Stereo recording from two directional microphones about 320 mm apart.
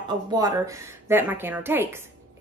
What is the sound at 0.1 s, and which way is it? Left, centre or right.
A woman's voice, centre.